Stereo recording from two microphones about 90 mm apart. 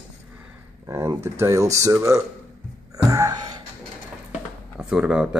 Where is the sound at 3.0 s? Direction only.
40° right (ahead or behind).